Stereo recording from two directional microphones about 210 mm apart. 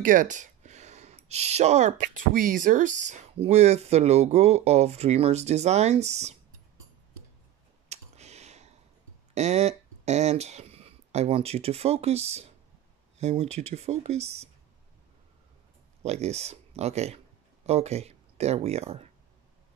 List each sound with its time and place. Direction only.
0.0 s speech: 40° right (ahead or behind)
7.9 s a sound: 30° right (ahead or behind)
9.3 s speech: 30° right (ahead or behind)
16.0 s speech: 30° right (ahead or behind)